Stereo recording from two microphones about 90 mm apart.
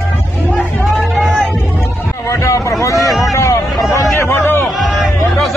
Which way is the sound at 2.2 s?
35° left (ahead or behind).